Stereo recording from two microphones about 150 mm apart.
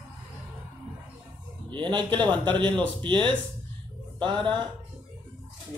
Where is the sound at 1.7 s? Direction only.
30° right (ahead or behind).